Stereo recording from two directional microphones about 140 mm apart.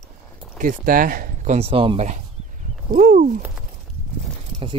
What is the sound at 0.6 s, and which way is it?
Speech, 75° right (ahead or behind).